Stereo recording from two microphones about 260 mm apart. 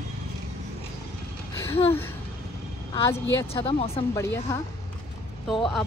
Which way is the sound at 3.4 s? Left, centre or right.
Centre.